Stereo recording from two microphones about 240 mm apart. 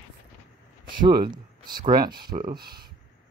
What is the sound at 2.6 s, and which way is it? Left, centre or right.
Speech, right.